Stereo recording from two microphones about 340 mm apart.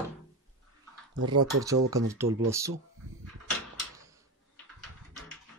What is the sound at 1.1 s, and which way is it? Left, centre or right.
Speech, right.